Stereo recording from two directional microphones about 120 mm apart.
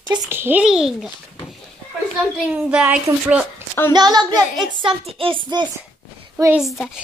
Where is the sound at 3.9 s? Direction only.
35° right (ahead or behind).